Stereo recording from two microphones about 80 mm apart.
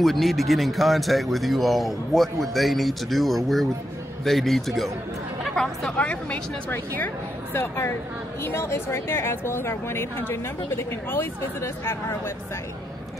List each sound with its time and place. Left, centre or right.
0.0 s speech: centre
5.9 s a woman's voice: centre
7.5 s speech: left